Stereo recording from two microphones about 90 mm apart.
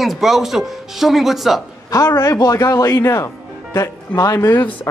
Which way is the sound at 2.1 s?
35° left (ahead or behind).